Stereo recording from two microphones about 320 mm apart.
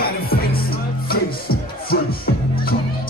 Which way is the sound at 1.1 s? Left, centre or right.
Left.